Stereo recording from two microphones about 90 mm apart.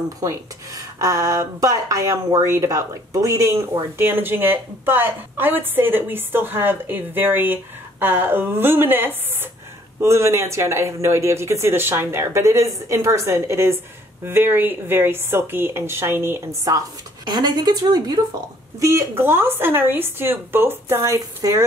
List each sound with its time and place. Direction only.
0.2 s speech: 35° right (ahead or behind)
17.3 s speech: 50° right (ahead or behind)
18.8 s speech: 30° right (ahead or behind)